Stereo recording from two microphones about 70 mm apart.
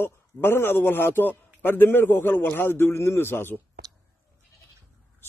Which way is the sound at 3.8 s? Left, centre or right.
Right.